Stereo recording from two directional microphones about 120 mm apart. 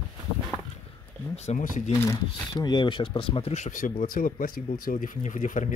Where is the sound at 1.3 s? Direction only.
70° left (ahead or behind).